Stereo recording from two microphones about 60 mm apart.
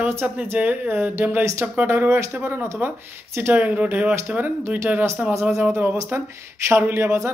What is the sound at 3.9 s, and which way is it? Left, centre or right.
Speech, right.